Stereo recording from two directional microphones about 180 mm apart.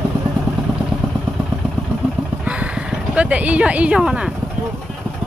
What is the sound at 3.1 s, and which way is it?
Speech, 5° right (ahead or behind).